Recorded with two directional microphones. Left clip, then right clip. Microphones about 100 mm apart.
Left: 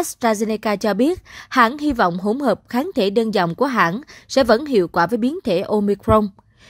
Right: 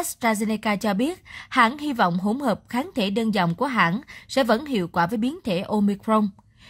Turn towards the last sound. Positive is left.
turn(degrees=45)  # may be behind; listen again after turning